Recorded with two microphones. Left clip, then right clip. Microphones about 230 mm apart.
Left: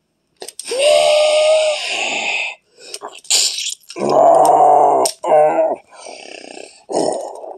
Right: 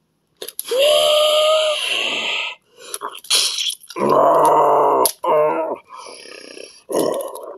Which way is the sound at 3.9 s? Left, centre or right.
Centre.